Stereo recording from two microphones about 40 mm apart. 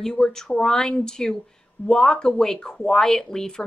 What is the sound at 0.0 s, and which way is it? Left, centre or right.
A woman's voice, centre.